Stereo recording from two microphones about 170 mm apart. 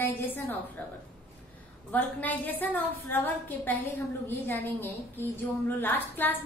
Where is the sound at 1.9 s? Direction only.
10° left (ahead or behind).